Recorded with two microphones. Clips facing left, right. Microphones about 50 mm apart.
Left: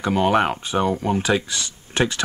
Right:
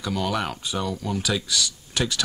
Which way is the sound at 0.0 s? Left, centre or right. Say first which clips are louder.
Left 8 dB; left.